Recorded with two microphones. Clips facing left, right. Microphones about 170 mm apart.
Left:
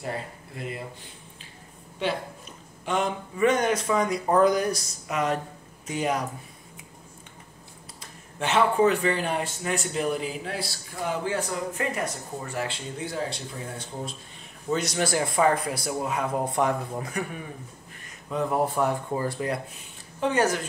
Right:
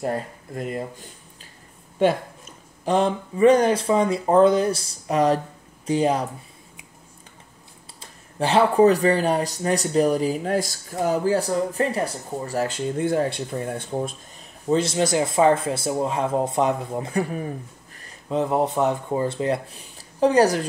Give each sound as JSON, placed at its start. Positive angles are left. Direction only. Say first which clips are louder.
{"t": 0.0, "sound": "speech", "louder": "right 7 dB", "side_deg": -45}
{"t": 8.0, "sound": "speech", "louder": "right 6 dB", "side_deg": -35}
{"t": 14.7, "sound": "speech", "louder": "right 5 dB", "side_deg": -25}
{"t": 18.3, "sound": "speech", "louder": "right 4 dB", "side_deg": -25}